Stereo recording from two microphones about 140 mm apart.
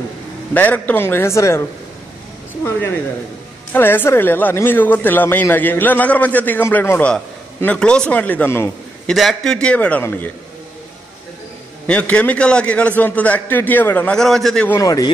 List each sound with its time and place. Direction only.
0.6 s speech: 10° left (ahead or behind)
3.7 s speech: 15° left (ahead or behind)
9.0 s speech: centre (ahead or behind)
11.9 s speech: 10° left (ahead or behind)
14.7 s a man's voice: 25° left (ahead or behind)